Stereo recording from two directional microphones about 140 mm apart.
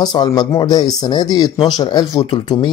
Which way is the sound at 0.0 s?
30° left (ahead or behind).